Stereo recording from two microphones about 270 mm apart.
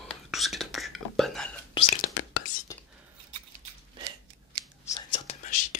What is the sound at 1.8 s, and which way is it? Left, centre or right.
Whispering, centre.